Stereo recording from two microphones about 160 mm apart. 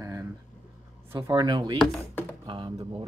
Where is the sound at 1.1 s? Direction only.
25° right (ahead or behind).